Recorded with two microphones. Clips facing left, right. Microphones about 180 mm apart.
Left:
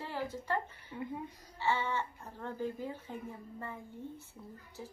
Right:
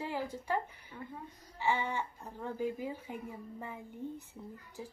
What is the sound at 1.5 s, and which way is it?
Speech, 15° right (ahead or behind).